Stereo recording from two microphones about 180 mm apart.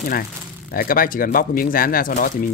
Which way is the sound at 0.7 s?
55° left (ahead or behind).